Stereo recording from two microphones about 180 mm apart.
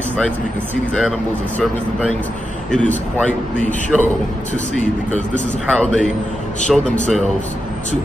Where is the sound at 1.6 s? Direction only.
5° left (ahead or behind).